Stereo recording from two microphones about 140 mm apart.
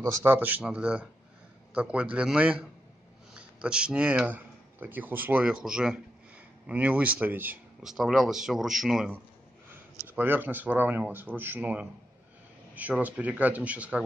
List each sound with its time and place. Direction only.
0.0 s a man's voice: 20° right (ahead or behind)
7.8 s speech: centre (ahead or behind)
10.0 s speech: 15° right (ahead or behind)